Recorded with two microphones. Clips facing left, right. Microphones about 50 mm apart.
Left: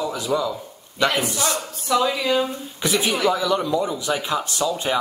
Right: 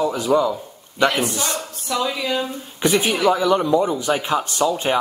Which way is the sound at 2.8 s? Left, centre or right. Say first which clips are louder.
Right 4 dB; right.